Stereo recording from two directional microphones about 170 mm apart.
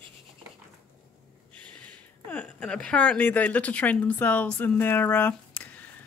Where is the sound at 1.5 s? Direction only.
10° left (ahead or behind).